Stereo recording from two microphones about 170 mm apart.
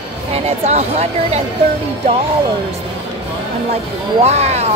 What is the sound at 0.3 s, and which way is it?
Speech, 40° right (ahead or behind).